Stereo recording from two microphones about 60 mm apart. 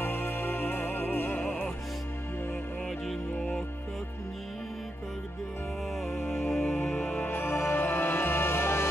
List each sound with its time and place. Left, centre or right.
0.0 s music: left
6.0 s music: left
6.7 s music: left